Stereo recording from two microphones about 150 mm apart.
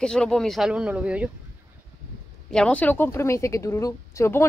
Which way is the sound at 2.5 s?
10° left (ahead or behind).